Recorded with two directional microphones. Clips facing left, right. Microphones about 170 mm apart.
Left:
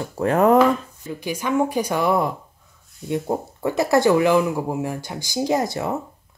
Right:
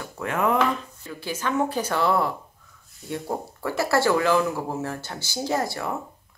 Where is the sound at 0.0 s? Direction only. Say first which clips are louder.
Left 8 dB; 35° left (ahead or behind).